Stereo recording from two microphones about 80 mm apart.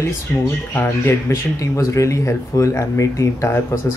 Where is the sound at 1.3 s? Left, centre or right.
Left.